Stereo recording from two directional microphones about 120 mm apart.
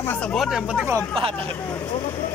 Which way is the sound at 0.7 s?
15° right (ahead or behind).